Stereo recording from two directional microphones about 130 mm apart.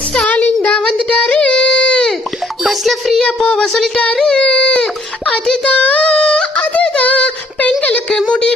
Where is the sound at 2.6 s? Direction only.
Centre (ahead or behind).